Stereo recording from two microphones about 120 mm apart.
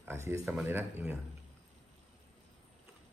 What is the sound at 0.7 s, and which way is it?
Speech, 15° right (ahead or behind).